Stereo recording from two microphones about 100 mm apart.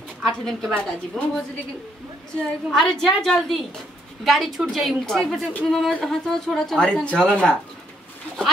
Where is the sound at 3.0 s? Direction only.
5° left (ahead or behind).